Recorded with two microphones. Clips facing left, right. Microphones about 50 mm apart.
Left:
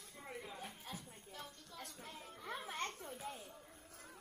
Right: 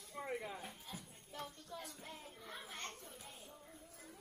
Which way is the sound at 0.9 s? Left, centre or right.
Left.